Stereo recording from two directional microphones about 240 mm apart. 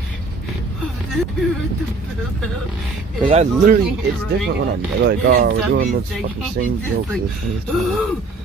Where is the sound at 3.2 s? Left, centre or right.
Right.